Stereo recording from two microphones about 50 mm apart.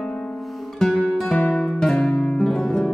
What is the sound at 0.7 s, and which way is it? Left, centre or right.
Music, centre.